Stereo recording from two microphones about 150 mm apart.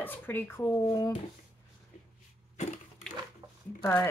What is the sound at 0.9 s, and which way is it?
Speech, 30° left (ahead or behind).